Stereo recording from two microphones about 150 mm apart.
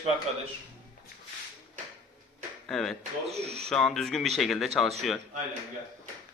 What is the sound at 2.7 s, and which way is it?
Speech, centre (ahead or behind).